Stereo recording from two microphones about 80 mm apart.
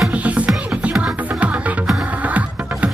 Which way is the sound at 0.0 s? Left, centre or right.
Centre.